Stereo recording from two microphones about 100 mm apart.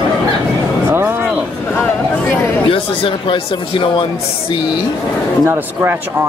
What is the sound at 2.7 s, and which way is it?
Speech, 65° left (ahead or behind).